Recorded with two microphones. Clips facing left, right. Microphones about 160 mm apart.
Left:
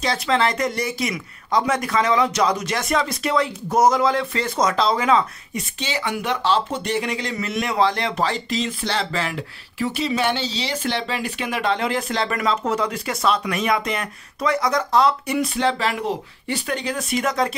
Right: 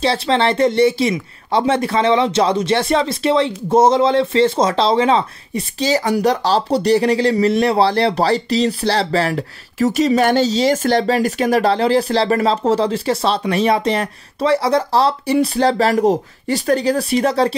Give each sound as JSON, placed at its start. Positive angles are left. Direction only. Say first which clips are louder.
{"t": 0.0, "sound": "speech", "louder": "right 4 dB", "side_deg": -30}